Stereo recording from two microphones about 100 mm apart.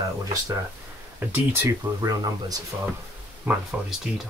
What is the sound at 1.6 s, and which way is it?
Speech, 35° right (ahead or behind).